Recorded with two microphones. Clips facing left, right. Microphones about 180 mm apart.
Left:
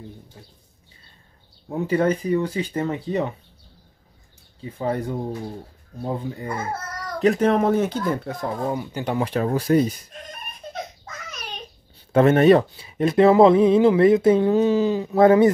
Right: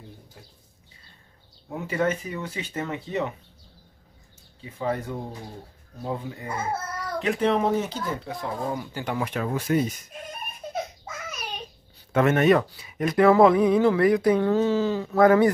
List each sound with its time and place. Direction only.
1.7 s speech: 30° left (ahead or behind)
4.6 s speech: 35° left (ahead or behind)
7.2 s speech: 40° left (ahead or behind)
8.6 s speech: 25° left (ahead or behind)
10.7 s babbling: 10° right (ahead or behind)
12.1 s speech: 30° left (ahead or behind)